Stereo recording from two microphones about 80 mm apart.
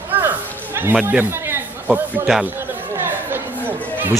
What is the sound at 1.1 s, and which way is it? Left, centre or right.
Speech, right.